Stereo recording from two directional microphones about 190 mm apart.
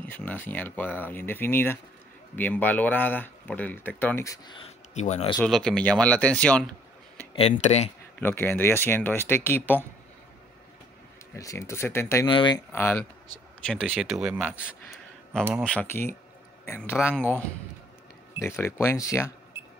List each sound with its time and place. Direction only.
0.0 s speech: 10° left (ahead or behind)
4.6 s speech: 35° left (ahead or behind)
5.4 s speech: 5° left (ahead or behind)
7.3 s speech: 35° left (ahead or behind)
8.2 s speech: 10° left (ahead or behind)
11.3 s speech: 15° left (ahead or behind)
12.3 s speech: 25° left (ahead or behind)
12.7 s speech: 10° left (ahead or behind); by 14.6 s 5° right (ahead or behind)
15.6 s a man's voice: 5° left (ahead or behind)
18.4 s speech: 15° left (ahead or behind)